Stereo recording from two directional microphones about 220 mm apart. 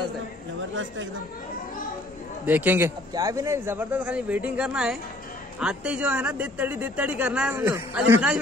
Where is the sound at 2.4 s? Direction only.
5° right (ahead or behind).